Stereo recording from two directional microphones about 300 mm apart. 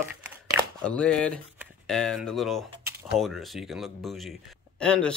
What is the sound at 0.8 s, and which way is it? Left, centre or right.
Speech, centre.